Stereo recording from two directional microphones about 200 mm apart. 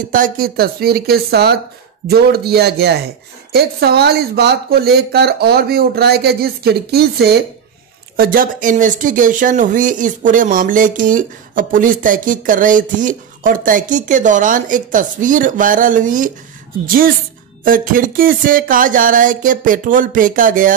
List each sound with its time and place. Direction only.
0.0 s speech: 45° right (ahead or behind)